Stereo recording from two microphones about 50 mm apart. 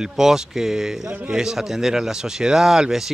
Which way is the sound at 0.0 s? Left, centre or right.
Centre.